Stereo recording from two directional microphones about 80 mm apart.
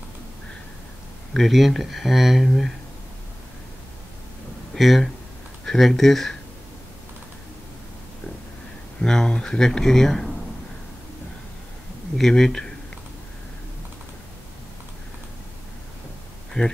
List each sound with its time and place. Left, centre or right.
1.3 s speech: centre
4.7 s speech: centre
9.0 s speech: centre
12.2 s speech: centre
16.6 s speech: centre